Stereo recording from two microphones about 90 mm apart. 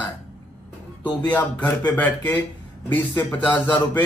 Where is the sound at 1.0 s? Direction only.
15° left (ahead or behind).